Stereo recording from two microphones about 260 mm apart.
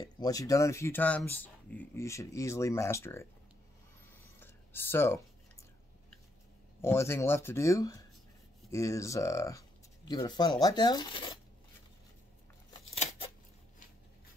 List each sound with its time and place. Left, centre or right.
0.0 s speech: centre
4.4 s a sound: centre
6.8 s speech: centre
12.7 s scissors: left